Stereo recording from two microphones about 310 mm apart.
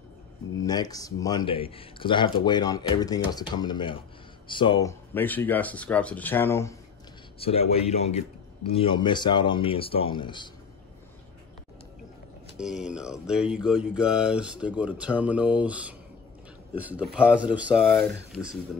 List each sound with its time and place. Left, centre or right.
0.7 s a man's voice: centre
12.5 s speech: centre